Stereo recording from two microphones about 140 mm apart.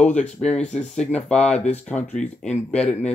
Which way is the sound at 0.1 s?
60° left (ahead or behind).